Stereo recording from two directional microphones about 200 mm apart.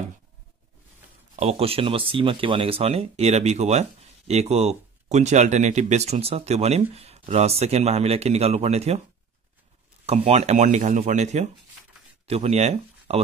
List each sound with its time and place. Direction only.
1.3 s speech: 30° right (ahead or behind)
10.0 s speech: 30° right (ahead or behind)